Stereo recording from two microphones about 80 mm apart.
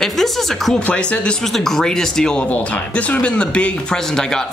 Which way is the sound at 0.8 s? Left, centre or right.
Centre.